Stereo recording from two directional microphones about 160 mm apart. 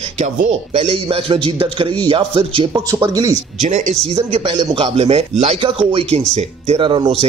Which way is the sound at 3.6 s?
50° right (ahead or behind).